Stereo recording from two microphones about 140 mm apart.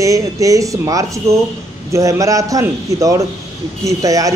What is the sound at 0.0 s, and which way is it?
Speech, 25° right (ahead or behind).